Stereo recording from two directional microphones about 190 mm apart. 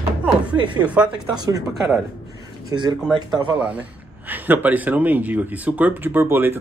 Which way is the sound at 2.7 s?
25° right (ahead or behind).